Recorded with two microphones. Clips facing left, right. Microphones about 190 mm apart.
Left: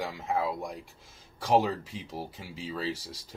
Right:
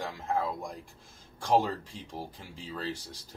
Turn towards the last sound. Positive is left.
turn(degrees=0)  # may be behind; listen again after turning